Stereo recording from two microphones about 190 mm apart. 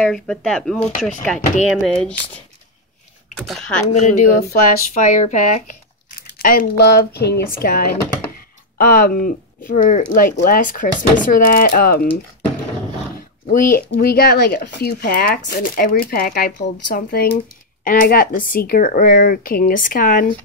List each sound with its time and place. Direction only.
0.0 s speech: centre (ahead or behind)
3.3 s speech: 5° left (ahead or behind)
3.9 s speech: 40° left (ahead or behind)
13.5 s speech: 45° left (ahead or behind)